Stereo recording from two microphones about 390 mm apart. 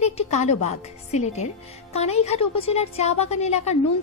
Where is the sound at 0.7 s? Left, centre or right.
Centre.